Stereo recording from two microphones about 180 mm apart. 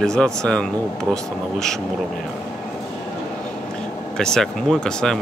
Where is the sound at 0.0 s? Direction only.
5° left (ahead or behind).